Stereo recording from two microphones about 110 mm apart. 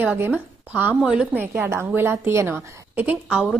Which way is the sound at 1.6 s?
25° right (ahead or behind).